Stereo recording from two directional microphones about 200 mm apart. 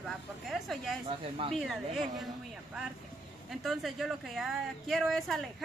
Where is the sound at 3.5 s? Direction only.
Centre (ahead or behind).